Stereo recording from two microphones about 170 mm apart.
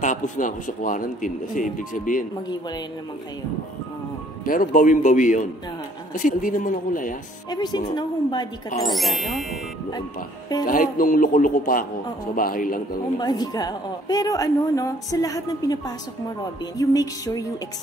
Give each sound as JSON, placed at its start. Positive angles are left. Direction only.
{"t": 0.0, "sound": "speech", "side_deg": 50}
{"t": 4.5, "sound": "speech", "side_deg": 50}
{"t": 7.4, "sound": "a woman's voice", "side_deg": 25}
{"t": 8.9, "sound": "speech", "side_deg": 0}
{"t": 10.7, "sound": "a man's voice", "side_deg": 55}
{"t": 13.2, "sound": "a woman's voice", "side_deg": 20}